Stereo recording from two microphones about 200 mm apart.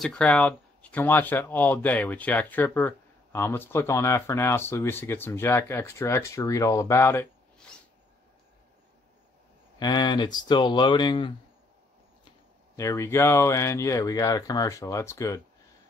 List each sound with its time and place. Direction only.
0.0 s speech: 5° left (ahead or behind)
9.8 s speech: 20° left (ahead or behind)
12.7 s speech: 15° left (ahead or behind)